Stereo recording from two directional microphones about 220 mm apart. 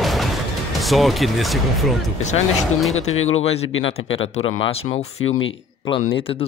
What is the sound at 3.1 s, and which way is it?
Speech, 65° left (ahead or behind).